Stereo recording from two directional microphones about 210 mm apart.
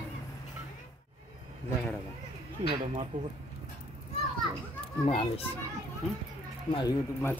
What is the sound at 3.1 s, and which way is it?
Speech, 40° right (ahead or behind).